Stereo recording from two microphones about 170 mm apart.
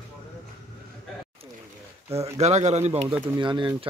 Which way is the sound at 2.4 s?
40° right (ahead or behind).